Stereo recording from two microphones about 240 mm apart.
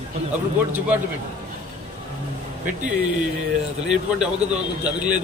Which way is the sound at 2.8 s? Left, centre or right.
Centre.